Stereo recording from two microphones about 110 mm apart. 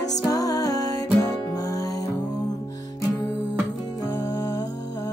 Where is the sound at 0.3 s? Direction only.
35° left (ahead or behind).